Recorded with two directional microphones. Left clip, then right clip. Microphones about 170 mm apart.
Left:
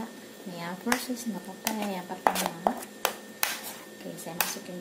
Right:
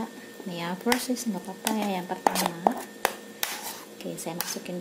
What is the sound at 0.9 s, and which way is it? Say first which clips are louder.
Speech: right 3 dB; 50° right (ahead or behind).